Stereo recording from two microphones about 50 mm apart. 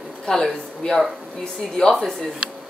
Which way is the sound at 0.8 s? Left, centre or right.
Centre.